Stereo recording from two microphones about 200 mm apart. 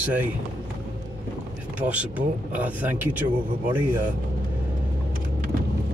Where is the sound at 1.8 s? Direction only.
5° right (ahead or behind).